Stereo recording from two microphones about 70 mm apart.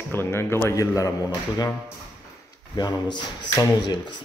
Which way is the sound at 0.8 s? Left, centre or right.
Left.